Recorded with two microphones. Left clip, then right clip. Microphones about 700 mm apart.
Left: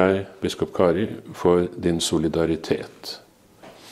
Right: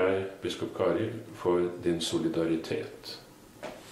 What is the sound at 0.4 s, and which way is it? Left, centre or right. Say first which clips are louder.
Speech: left 9 dB; left.